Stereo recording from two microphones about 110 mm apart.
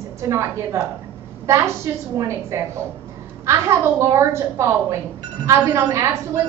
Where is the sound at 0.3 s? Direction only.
30° right (ahead or behind).